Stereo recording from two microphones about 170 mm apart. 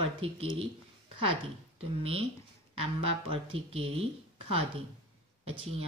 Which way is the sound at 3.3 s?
35° right (ahead or behind).